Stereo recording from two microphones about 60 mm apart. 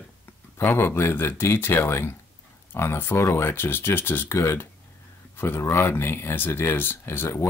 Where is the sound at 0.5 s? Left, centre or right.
Left.